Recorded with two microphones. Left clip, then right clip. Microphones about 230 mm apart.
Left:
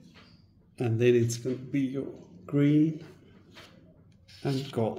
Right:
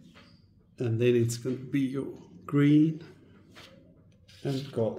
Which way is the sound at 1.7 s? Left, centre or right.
Right.